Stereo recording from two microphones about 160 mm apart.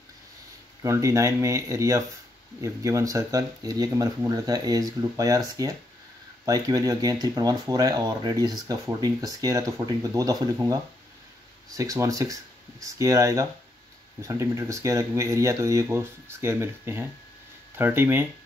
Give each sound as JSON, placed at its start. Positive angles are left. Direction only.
{"t": 0.8, "sound": "speech", "side_deg": -20}